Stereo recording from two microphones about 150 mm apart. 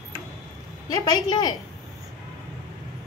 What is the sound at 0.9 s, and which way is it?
Speech, 30° left (ahead or behind).